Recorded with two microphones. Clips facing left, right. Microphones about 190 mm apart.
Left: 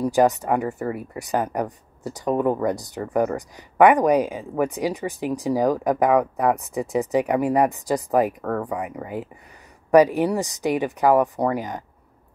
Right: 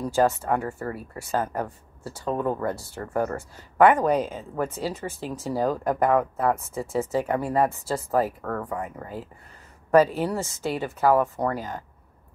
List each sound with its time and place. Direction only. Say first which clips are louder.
0.0 s speech: left 4 dB; 15° left (ahead or behind)